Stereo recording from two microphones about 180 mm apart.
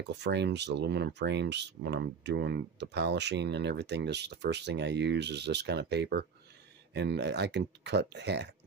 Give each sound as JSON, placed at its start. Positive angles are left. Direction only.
{"t": 0.1, "sound": "speech", "side_deg": -70}